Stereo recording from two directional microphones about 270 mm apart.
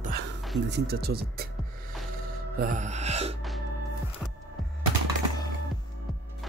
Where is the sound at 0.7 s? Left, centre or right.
Right.